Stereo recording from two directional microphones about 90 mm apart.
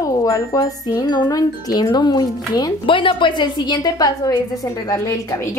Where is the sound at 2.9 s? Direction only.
70° left (ahead or behind); by 4.4 s 45° left (ahead or behind).